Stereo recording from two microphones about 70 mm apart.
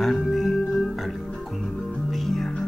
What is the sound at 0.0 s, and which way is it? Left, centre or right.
Music, centre.